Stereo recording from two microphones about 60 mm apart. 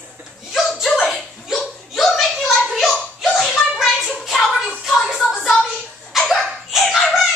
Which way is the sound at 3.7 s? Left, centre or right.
Centre.